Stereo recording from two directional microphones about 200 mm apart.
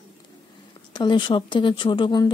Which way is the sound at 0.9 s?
25° left (ahead or behind).